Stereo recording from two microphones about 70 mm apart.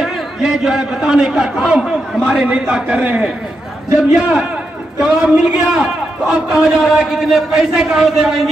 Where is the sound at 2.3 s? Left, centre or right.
Centre.